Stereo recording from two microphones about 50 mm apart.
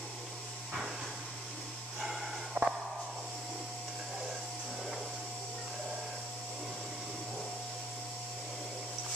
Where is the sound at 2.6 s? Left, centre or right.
Right.